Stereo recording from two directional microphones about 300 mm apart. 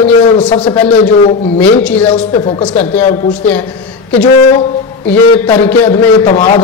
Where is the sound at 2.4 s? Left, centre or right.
Centre.